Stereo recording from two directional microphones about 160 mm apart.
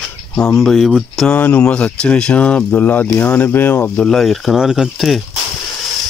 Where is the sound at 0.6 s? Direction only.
Centre (ahead or behind).